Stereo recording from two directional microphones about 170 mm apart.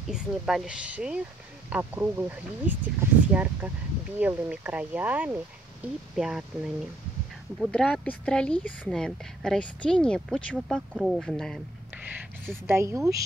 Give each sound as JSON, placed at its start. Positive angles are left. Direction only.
{"t": 0.1, "sound": "speech", "side_deg": -5}
{"t": 12.4, "sound": "speech", "side_deg": -15}